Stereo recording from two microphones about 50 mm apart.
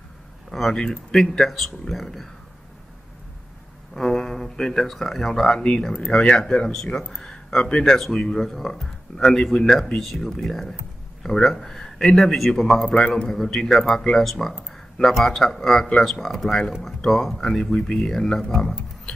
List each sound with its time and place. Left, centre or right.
0.5 s a sound: centre
0.7 s speech: centre
3.9 s speech: centre
12.8 s a man's voice: centre
13.3 s speech: centre
14.7 s a sound: centre
15.2 s speech: centre